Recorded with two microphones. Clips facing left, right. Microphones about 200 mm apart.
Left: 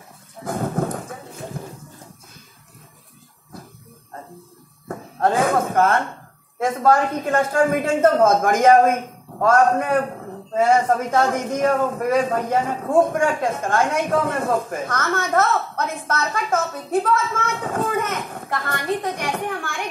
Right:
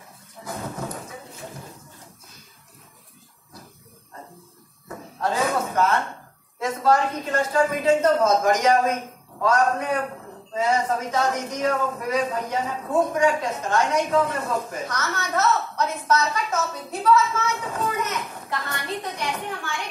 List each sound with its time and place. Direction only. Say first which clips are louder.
0.4 s thunder: left 8 dB; 50° left (ahead or behind)
4.8 s a sound: left 6 dB; 50° left (ahead or behind)
6.6 s a man's voice: left 3 dB; 55° left (ahead or behind)